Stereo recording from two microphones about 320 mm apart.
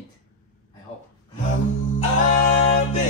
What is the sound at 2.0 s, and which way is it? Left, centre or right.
A capella, left.